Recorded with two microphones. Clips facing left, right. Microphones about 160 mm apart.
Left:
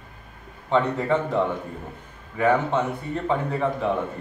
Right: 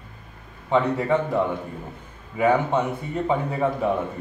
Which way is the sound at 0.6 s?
5° right (ahead or behind).